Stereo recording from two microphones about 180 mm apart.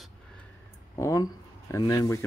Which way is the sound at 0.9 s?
20° left (ahead or behind).